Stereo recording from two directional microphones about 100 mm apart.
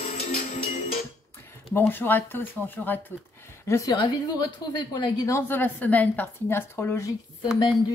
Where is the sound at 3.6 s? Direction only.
30° left (ahead or behind); by 5.2 s 50° left (ahead or behind).